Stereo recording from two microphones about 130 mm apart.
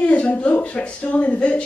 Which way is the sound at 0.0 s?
10° left (ahead or behind).